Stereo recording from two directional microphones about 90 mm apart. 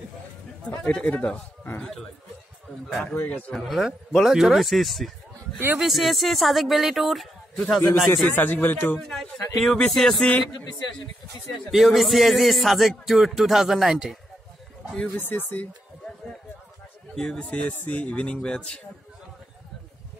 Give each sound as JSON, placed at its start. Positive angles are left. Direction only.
{"t": 0.7, "sound": "a man's voice", "side_deg": 15}
{"t": 3.5, "sound": "speech", "side_deg": 0}
{"t": 8.3, "sound": "speech", "side_deg": 25}
{"t": 9.0, "sound": "speech", "side_deg": 5}
{"t": 11.7, "sound": "speech", "side_deg": 0}
{"t": 15.1, "sound": "speech", "side_deg": 20}
{"t": 17.1, "sound": "a man's voice", "side_deg": 5}